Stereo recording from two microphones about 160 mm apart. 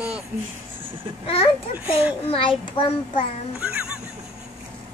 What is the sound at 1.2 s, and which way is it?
A child's voice, 35° left (ahead or behind).